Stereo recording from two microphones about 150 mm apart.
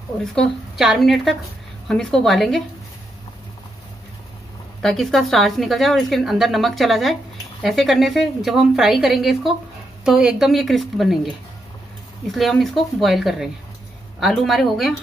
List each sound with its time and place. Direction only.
0.2 s speech: 5° left (ahead or behind)
4.8 s speech: centre (ahead or behind)
12.3 s speech: centre (ahead or behind)